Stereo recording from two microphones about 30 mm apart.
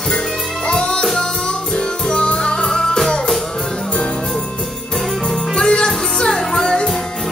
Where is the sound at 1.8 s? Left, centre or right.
Left.